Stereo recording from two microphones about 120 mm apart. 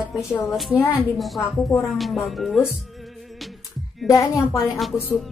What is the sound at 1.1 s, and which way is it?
Music, centre (ahead or behind).